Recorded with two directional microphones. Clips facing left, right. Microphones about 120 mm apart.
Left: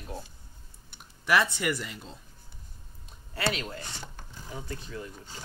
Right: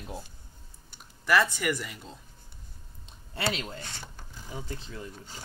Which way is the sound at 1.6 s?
Centre (ahead or behind).